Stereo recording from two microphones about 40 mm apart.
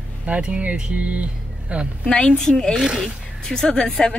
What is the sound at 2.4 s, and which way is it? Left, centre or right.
Speech, centre.